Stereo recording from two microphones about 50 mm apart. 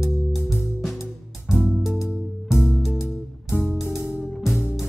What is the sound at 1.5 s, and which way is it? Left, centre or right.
Music, centre.